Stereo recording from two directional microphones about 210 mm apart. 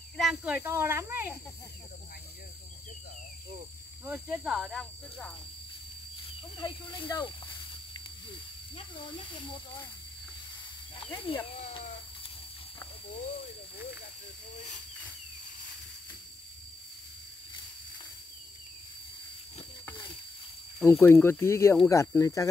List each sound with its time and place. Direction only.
0.2 s speech: 5° right (ahead or behind)
4.0 s speech: 5° right (ahead or behind)
6.5 s speech: 20° left (ahead or behind)
11.0 s speech: 20° left (ahead or behind)
20.8 s speech: 10° left (ahead or behind)